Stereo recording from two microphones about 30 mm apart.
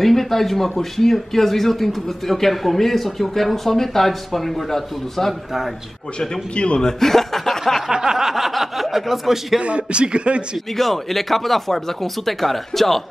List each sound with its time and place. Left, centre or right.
0.0 s speech: centre
6.1 s speech: left
6.8 s speech: left
7.1 s speech: centre
7.9 s a sound: right
8.2 s speech: centre
9.6 s a man's voice: right
10.8 s speech: centre